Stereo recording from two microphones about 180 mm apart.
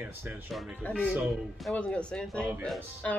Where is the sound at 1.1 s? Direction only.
5° right (ahead or behind).